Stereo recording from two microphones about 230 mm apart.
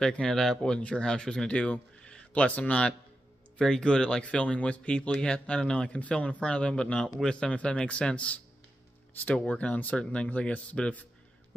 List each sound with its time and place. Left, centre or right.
0.0 s speech: centre